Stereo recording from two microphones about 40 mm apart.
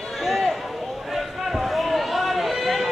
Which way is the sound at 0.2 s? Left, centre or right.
Centre.